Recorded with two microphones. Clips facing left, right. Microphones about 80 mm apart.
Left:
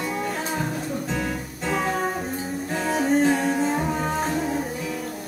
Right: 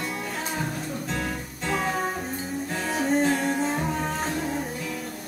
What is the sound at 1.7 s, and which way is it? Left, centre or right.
Music, centre.